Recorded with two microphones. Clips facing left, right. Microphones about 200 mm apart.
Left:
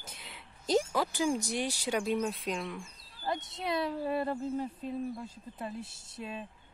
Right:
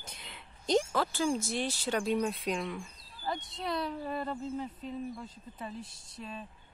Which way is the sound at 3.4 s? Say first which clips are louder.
Even; 25° left (ahead or behind).